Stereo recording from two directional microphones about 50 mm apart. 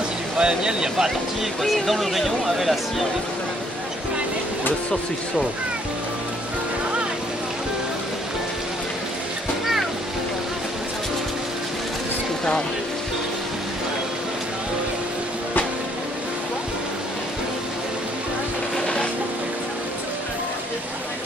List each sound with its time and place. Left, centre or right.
0.4 s speech: centre
1.6 s speech: centre